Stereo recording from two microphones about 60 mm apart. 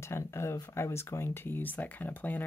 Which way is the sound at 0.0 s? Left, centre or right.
Left.